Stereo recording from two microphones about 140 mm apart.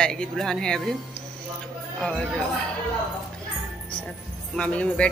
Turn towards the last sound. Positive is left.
turn(degrees=10)  # may be behind; listen again after turning